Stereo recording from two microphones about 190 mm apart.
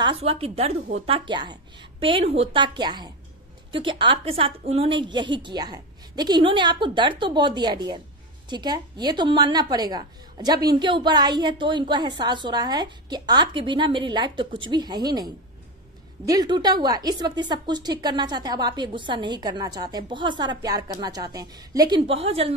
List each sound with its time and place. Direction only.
0.0 s a woman's voice: 30° right (ahead or behind)